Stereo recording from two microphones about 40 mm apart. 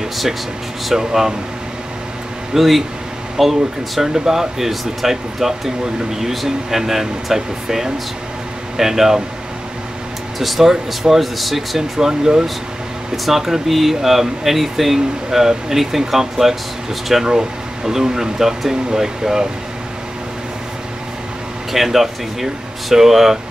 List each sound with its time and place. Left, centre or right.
0.9 s speech: centre
2.5 s speech: centre
10.4 s speech: centre
12.1 s speech: centre
13.1 s speech: centre
21.7 s speech: centre